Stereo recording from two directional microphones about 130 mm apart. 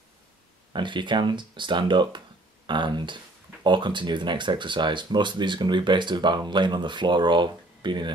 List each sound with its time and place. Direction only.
0.7 s speech: 35° right (ahead or behind)